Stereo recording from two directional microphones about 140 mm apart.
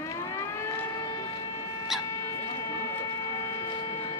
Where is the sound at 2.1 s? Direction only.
20° left (ahead or behind).